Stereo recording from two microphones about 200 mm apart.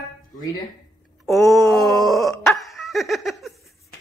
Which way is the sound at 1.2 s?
Centre (ahead or behind).